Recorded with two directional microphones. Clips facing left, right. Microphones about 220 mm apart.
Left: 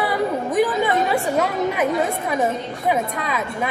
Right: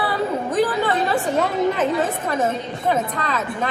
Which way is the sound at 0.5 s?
10° left (ahead or behind).